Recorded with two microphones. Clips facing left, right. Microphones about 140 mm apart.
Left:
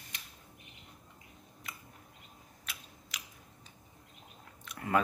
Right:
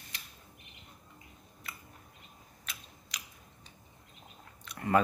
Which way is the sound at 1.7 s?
15° left (ahead or behind).